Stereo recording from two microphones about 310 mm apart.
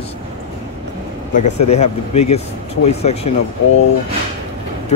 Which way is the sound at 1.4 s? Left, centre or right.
Left.